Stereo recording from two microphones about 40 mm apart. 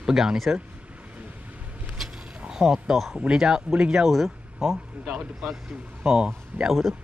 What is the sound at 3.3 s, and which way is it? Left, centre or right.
Speech, centre.